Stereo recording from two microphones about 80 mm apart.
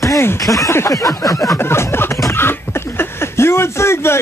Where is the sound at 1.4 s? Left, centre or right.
Left.